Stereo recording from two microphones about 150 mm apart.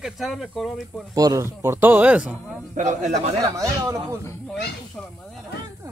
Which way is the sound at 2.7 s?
55° right (ahead or behind).